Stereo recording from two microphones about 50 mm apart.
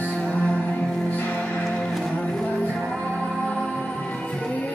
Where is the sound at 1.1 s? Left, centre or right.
Left; by 4.5 s centre.